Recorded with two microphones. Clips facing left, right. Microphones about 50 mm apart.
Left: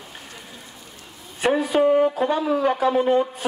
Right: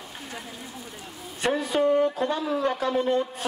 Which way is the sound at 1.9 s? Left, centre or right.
Centre.